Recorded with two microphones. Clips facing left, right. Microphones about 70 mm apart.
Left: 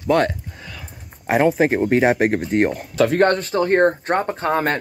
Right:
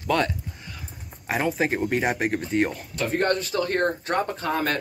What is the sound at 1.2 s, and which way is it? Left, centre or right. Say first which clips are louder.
Speech: left 8 dB; left.